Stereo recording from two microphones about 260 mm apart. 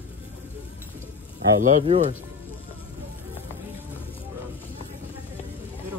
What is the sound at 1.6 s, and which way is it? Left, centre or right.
Speech, right.